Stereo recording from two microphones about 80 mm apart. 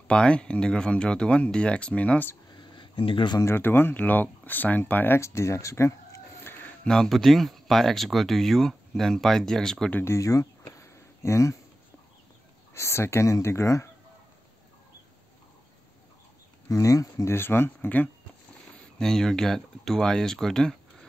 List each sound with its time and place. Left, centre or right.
0.1 s speech: centre
2.5 s a sound: left
3.4 s speech: left
6.8 s speech: centre
9.9 s a sound: left
12.7 s speech: left
16.6 s speech: left
18.9 s speech: centre